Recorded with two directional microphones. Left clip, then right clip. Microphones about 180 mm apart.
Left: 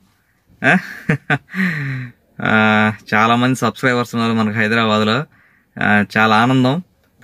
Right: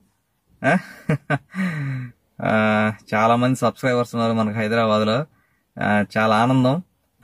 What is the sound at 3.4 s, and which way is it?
Speech, 10° right (ahead or behind).